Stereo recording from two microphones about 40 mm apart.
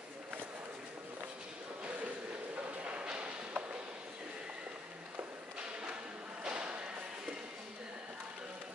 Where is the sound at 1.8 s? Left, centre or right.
Right.